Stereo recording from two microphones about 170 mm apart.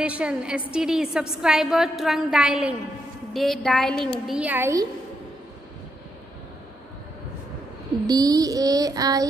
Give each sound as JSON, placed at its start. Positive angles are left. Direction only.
{"t": 0.0, "sound": "a woman's voice", "side_deg": -5}
{"t": 4.3, "sound": "a woman's voice", "side_deg": -10}
{"t": 8.1, "sound": "child singing", "side_deg": -20}